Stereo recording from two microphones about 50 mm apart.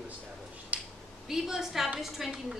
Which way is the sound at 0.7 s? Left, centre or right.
Right.